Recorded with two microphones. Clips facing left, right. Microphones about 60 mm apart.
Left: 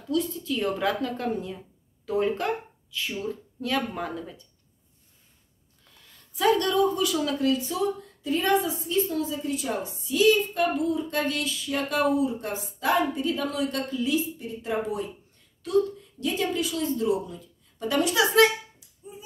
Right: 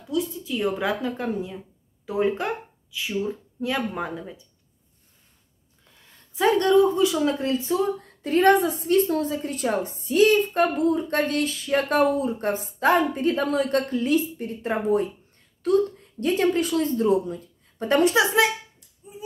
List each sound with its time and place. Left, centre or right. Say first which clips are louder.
0.1 s a woman's voice: even; centre
6.3 s speech: right 4 dB; right
8.2 s a woman's voice: right 6 dB; right